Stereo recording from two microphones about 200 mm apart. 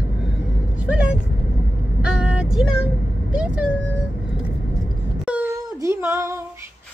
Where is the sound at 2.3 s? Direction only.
5° right (ahead or behind).